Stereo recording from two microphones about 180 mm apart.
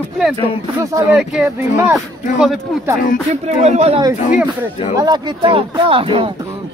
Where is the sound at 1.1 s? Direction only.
5° right (ahead or behind).